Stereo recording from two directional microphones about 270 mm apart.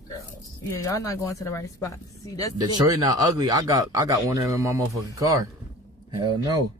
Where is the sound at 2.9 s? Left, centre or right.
Centre.